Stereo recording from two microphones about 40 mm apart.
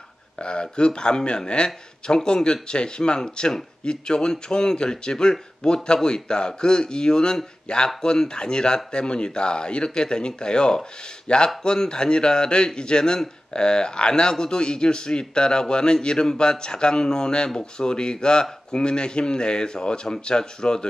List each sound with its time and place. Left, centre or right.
0.4 s speech: left